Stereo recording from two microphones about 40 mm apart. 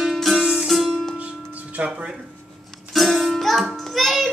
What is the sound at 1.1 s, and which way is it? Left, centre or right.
Music, right.